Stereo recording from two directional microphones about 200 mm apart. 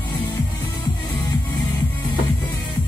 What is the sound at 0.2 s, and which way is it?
Music, 10° left (ahead or behind).